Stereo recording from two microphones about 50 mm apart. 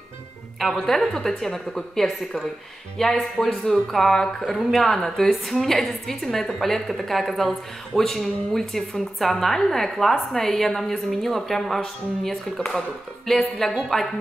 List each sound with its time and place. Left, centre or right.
0.7 s a woman's voice: centre
12.5 s speech: centre